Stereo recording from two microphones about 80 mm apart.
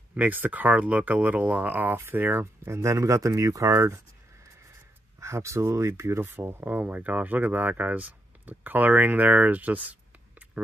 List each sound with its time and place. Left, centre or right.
0.1 s speech: right
5.2 s speech: right; by 9.9 s centre